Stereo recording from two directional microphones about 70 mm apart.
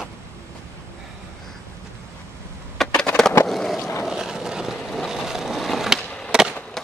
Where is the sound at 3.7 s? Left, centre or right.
Left.